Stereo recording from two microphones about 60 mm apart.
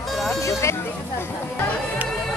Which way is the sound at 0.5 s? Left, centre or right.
Left.